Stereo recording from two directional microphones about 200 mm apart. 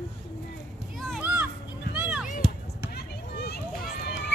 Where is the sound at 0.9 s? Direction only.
Centre (ahead or behind).